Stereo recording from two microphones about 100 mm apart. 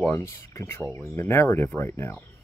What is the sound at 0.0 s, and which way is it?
Speech, 25° left (ahead or behind).